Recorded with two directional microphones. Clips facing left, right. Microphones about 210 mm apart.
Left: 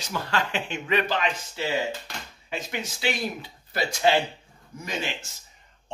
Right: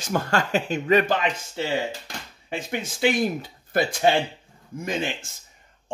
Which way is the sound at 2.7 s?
50° right (ahead or behind).